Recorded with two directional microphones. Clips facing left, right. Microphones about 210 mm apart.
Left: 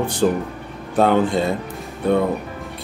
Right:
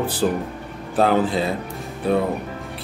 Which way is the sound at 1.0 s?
5° right (ahead or behind).